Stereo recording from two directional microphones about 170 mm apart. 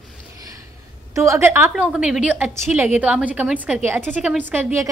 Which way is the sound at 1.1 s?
15° right (ahead or behind).